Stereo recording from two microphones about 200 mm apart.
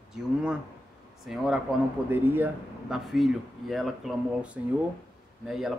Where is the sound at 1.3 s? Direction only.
Centre (ahead or behind).